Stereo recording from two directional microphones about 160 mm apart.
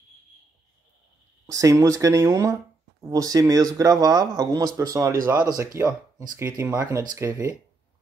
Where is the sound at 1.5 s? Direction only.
20° right (ahead or behind).